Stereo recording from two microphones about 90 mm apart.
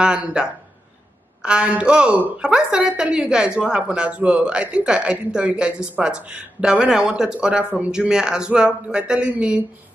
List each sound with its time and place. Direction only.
0.0 s a woman's voice: 10° right (ahead or behind)